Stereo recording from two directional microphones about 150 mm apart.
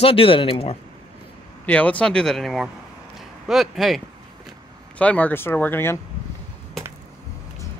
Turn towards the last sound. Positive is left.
turn(degrees=15)  # may be behind; listen again after turning